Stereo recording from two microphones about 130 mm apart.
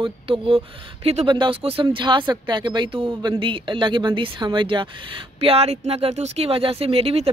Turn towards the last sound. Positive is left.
turn(degrees=-50)  # may be behind; listen again after turning